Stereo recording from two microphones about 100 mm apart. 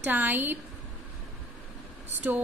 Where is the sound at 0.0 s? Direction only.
20° right (ahead or behind).